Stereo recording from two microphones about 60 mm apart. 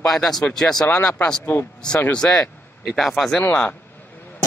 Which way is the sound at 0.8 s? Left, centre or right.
Left.